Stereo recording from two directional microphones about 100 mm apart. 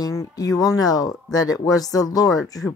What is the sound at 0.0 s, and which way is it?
Speech, 35° left (ahead or behind).